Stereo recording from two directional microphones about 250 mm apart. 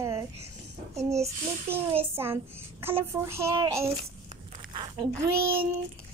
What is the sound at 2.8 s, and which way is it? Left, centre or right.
Speech, centre.